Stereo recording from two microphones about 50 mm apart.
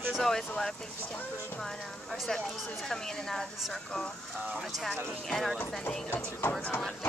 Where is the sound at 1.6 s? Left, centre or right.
Centre.